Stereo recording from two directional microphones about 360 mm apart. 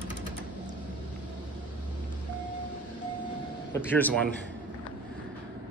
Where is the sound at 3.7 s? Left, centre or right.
Centre.